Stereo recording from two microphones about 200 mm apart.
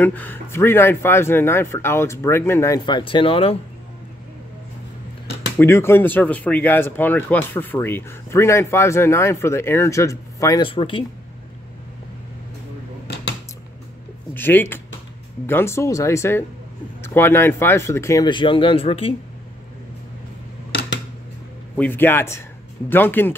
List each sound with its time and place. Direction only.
0.0 s speech: 10° left (ahead or behind); by 3.5 s 25° left (ahead or behind)
5.6 s speech: 10° left (ahead or behind)
14.3 s speech: 10° left (ahead or behind); by 19.1 s 30° left (ahead or behind)
21.7 s speech: 10° left (ahead or behind)